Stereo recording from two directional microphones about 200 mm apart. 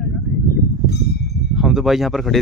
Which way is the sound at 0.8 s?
55° left (ahead or behind).